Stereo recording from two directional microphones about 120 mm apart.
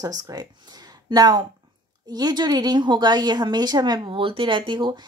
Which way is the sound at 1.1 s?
35° right (ahead or behind).